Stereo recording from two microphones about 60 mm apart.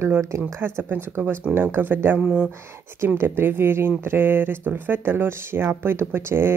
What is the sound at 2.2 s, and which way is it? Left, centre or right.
Speech, centre.